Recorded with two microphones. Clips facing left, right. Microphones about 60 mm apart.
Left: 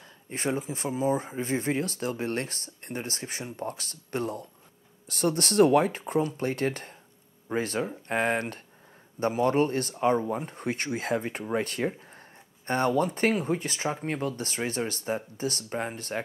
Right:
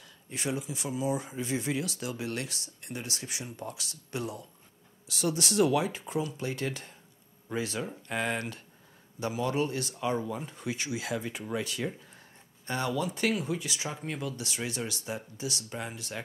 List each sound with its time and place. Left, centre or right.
0.3 s speech: left